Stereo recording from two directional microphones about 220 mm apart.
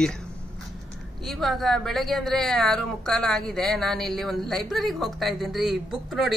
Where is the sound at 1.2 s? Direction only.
Centre (ahead or behind).